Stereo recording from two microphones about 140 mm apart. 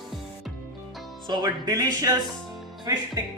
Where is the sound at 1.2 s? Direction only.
25° right (ahead or behind).